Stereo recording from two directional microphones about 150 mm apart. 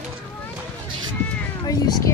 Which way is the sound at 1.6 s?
25° left (ahead or behind).